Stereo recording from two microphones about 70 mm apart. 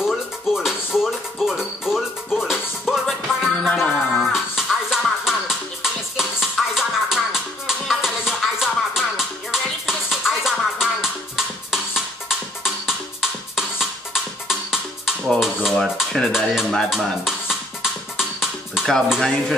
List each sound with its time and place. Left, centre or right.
0.0 s music: centre
4.3 s music: centre
15.8 s stir: centre
16.3 s music: centre